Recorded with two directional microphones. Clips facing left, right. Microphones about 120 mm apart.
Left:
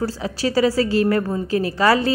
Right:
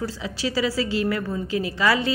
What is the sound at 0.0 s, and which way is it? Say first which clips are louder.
A woman's voice: left 5 dB; 45° left (ahead or behind).